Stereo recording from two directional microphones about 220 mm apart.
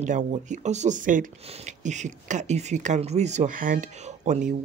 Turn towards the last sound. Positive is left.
turn(degrees=-35)  # may be behind; listen again after turning